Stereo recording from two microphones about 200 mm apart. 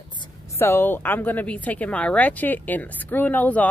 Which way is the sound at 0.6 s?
10° left (ahead or behind).